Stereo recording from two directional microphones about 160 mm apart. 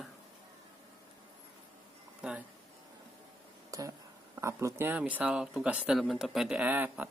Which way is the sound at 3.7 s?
20° right (ahead or behind).